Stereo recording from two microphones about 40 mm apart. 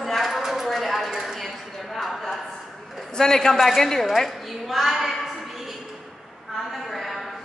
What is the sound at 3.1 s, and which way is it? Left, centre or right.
A man's voice, centre.